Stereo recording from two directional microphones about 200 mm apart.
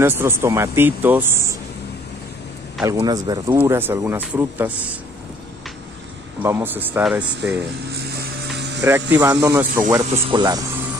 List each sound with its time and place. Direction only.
0.0 s speech: 10° right (ahead or behind)
2.8 s speech: 20° right (ahead or behind)
6.4 s speech: 10° right (ahead or behind)
7.9 s ratchet: 55° right (ahead or behind)
8.8 s speech: 10° right (ahead or behind)